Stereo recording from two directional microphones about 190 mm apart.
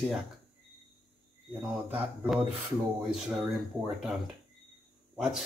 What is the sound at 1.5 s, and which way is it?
Speech, 10° right (ahead or behind).